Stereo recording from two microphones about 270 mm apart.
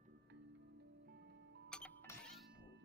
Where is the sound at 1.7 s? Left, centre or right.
Centre.